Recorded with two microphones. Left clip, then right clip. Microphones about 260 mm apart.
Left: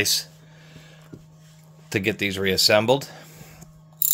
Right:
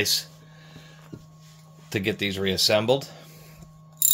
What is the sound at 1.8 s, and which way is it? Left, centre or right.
Speech, left.